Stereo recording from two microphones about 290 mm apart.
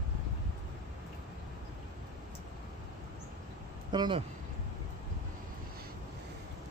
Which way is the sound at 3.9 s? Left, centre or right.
Centre.